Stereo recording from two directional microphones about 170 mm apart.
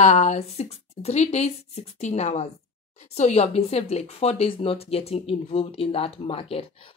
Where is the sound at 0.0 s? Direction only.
45° left (ahead or behind).